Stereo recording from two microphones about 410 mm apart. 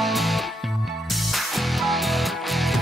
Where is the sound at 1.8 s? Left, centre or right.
Centre.